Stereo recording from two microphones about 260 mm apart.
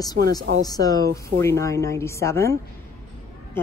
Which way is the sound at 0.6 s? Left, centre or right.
Centre.